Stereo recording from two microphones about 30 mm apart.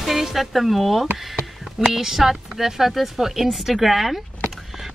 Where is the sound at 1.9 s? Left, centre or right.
Centre.